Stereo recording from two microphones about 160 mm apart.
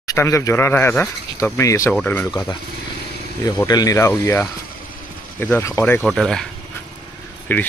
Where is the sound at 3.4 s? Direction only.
25° left (ahead or behind).